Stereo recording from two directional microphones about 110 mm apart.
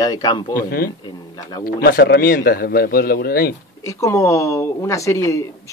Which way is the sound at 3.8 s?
25° left (ahead or behind).